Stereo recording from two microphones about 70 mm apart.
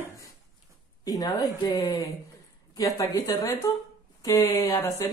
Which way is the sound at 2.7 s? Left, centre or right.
Left.